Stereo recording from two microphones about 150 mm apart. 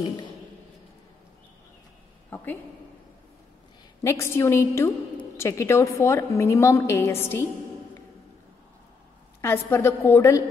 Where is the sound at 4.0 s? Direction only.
15° left (ahead or behind).